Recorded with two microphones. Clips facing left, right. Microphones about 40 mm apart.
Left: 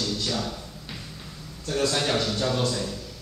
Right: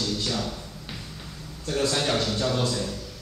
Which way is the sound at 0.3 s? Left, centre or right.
Centre.